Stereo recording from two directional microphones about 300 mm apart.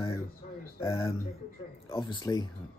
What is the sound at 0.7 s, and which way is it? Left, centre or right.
Speech, centre.